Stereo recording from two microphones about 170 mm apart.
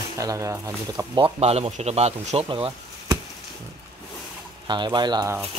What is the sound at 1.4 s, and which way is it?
A man's voice, 40° right (ahead or behind).